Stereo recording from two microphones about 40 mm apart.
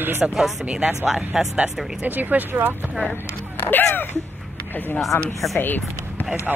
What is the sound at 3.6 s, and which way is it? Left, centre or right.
Speech, left.